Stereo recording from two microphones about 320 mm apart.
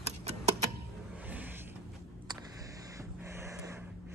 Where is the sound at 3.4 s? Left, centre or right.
Centre.